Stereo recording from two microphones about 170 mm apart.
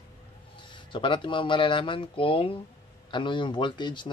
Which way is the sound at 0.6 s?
30° left (ahead or behind).